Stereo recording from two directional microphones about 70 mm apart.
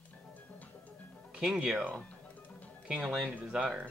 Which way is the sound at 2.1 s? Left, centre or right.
Left.